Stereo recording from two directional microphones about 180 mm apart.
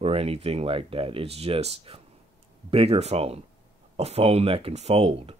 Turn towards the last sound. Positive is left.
turn(degrees=-35)  # may be behind; listen again after turning